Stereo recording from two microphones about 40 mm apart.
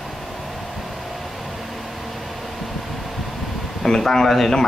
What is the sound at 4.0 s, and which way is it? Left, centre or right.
Speech, centre.